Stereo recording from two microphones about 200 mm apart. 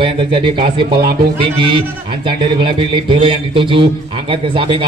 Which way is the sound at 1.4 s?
25° right (ahead or behind).